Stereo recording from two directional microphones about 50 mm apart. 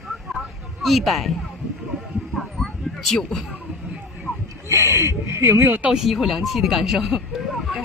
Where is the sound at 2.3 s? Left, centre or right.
Centre.